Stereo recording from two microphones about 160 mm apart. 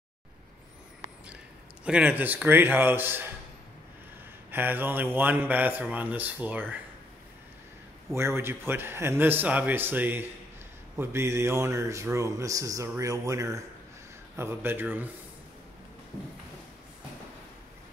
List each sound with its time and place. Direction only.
1.9 s speech: 10° right (ahead or behind)
4.5 s speech: 10° right (ahead or behind)
8.1 s speech: 15° right (ahead or behind)